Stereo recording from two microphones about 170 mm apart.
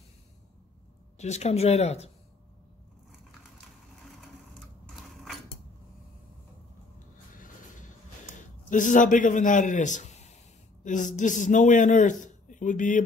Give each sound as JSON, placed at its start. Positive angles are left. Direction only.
{"t": 1.1, "sound": "speech", "side_deg": 40}
{"t": 7.3, "sound": "a sound", "side_deg": 50}
{"t": 8.4, "sound": "a man's voice", "side_deg": 50}